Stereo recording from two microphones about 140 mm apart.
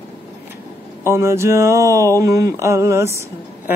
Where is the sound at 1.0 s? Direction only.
20° right (ahead or behind).